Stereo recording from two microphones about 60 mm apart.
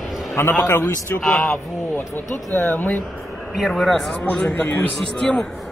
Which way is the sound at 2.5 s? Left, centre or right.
Left.